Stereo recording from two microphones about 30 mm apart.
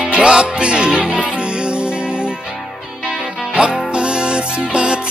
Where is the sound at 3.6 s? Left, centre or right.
Right.